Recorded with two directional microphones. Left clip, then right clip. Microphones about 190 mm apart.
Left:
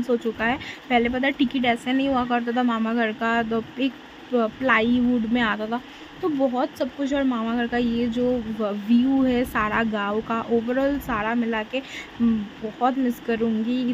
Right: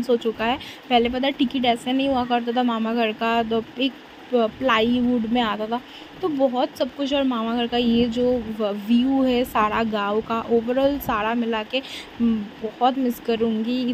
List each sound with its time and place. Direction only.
0.0 s a woman's voice: 15° right (ahead or behind)
12.8 s a woman's voice: 15° right (ahead or behind)